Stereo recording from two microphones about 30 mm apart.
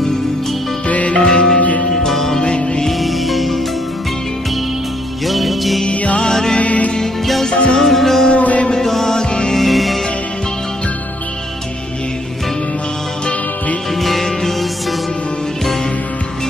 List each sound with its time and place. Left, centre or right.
0.8 s music: left
1.2 s music: left
2.0 s music: centre
2.4 s music: left
2.9 s music: centre
5.2 s music: centre
6.6 s music: left
7.5 s music: left
7.8 s music: centre
8.4 s music: left
8.8 s music: centre
9.7 s music: centre
13.9 s music: centre